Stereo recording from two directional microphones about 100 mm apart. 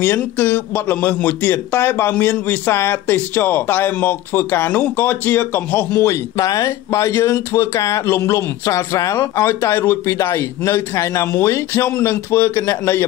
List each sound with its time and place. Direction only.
0.0 s speech: 20° left (ahead or behind)
6.0 s speech: 35° left (ahead or behind)